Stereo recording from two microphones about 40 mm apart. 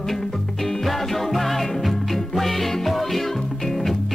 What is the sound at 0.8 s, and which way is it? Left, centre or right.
Music, centre.